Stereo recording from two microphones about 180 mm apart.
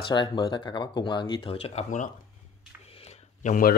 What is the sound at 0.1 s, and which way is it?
Speech, 25° left (ahead or behind).